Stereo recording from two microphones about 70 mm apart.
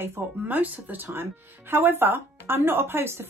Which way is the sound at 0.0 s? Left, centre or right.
Right.